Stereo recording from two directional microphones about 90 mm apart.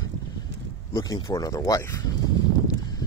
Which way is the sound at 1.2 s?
40° left (ahead or behind).